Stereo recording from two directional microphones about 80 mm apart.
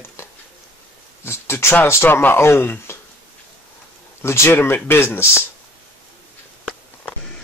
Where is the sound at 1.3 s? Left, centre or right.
Left.